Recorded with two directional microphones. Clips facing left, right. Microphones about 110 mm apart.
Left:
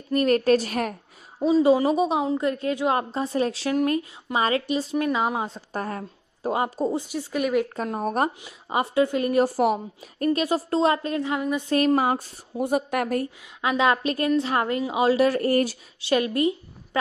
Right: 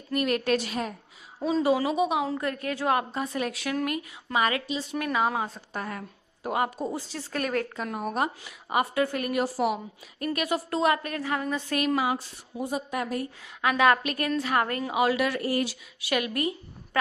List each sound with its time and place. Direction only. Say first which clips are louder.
0.1 s a woman's voice: left 6 dB; 40° left (ahead or behind)
1.6 s a woman's voice: left 4 dB; 25° left (ahead or behind)
2.2 s a woman's voice: left 5 dB; 20° left (ahead or behind)
5.7 s a woman's voice: left 4 dB; 40° left (ahead or behind)
7.1 s speech: left 5 dB; 10° left (ahead or behind)
7.7 s a woman's voice: left 5 dB; 35° left (ahead or behind)
8.4 s a woman's voice: left 1 dB; 25° left (ahead or behind)
9.3 s speech: left 5 dB; 45° left (ahead or behind)
10.3 s a woman's voice: left 3 dB; 30° left (ahead or behind)
11.7 s speech: left 6 dB; 40° left (ahead or behind); by 13.2 s 60° left (ahead or behind)
13.6 s a woman's voice: even; 20° left (ahead or behind)
15.4 s speech: left 6 dB; 45° left (ahead or behind)
16.0 s a woman's voice: left 6 dB; 30° left (ahead or behind)